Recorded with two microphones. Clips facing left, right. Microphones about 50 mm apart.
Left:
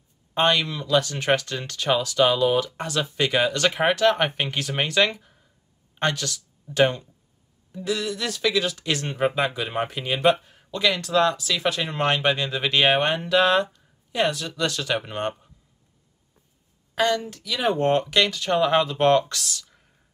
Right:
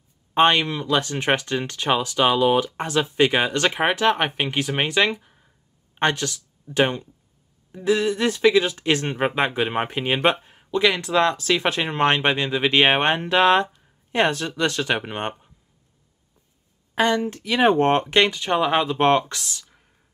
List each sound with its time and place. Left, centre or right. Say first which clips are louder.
0.3 s speech: right 4 dB; right; by 5.4 s centre
5.9 s speech: right 3 dB; right
16.9 s a woman's voice: right 2 dB; right